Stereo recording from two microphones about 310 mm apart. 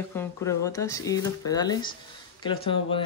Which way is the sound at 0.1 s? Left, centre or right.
Centre.